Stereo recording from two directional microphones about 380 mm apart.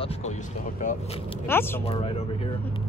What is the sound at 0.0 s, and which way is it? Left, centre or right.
Speech, centre.